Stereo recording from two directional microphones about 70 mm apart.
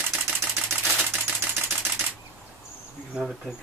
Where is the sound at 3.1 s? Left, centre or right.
Centre.